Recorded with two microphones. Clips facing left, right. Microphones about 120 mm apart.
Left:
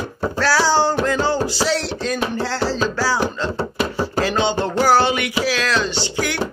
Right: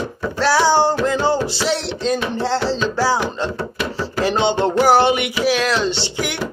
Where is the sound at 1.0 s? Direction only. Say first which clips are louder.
Right 1 dB; 20° right (ahead or behind).